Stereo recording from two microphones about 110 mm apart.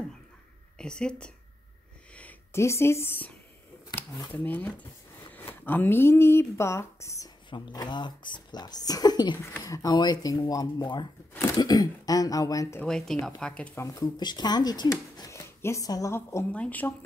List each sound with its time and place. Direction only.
0.7 s speech: 5° left (ahead or behind)
2.5 s speech: 25° left (ahead or behind)
7.4 s speech: 45° left (ahead or behind)
9.4 s speech: 25° left (ahead or behind)
9.9 s speech: 40° left (ahead or behind)
12.8 s speech: 5° left (ahead or behind)
13.7 s speech: 35° left (ahead or behind)
16.5 s speech: 15° left (ahead or behind)